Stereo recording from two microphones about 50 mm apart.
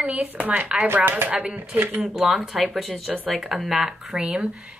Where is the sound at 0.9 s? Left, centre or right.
Right.